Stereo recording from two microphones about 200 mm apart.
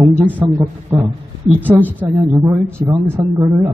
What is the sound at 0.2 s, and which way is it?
A man's voice, 10° right (ahead or behind).